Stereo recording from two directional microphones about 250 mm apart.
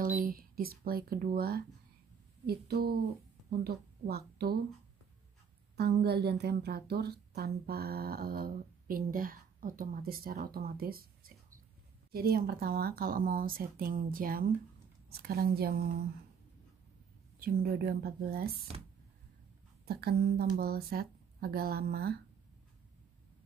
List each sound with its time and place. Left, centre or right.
0.0 s a woman's voice: right
5.8 s a woman's voice: right
17.4 s a woman's voice: right
19.8 s a woman's voice: right